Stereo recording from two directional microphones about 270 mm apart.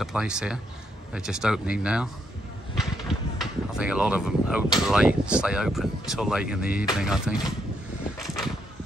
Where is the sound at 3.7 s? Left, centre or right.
Centre.